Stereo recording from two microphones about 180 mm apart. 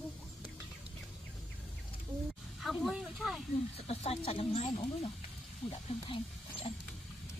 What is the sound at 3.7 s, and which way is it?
Speech, 35° left (ahead or behind).